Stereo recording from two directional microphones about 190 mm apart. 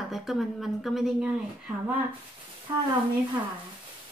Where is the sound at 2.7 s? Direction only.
25° right (ahead or behind).